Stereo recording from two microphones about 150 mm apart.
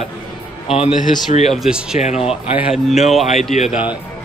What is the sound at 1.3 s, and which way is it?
Speech, 50° left (ahead or behind).